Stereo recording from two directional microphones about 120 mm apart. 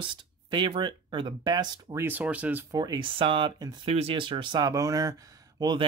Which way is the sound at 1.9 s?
15° right (ahead or behind).